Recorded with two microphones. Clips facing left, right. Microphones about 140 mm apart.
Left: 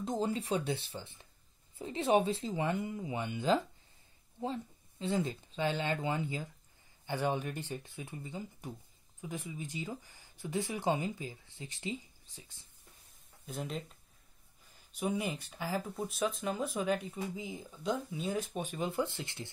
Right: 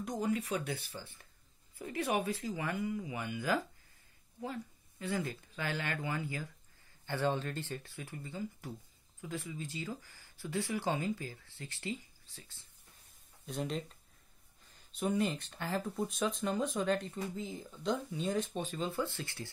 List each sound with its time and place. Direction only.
0.0 s speech: 30° left (ahead or behind)
13.5 s speech: centre (ahead or behind)
15.0 s speech: 10° left (ahead or behind)